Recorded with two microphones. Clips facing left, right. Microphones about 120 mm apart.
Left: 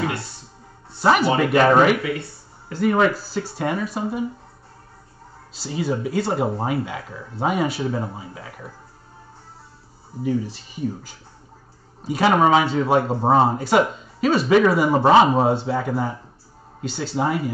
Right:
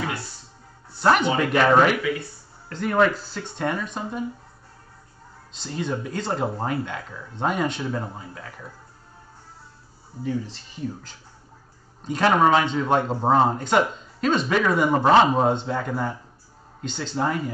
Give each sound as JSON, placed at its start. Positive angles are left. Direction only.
{"t": 0.0, "sound": "music", "side_deg": 25}
{"t": 1.0, "sound": "speech", "side_deg": 5}
{"t": 5.5, "sound": "speech", "side_deg": 5}
{"t": 10.2, "sound": "speech", "side_deg": 10}